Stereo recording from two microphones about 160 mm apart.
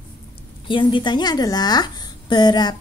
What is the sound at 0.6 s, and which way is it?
A woman's voice, 30° left (ahead or behind).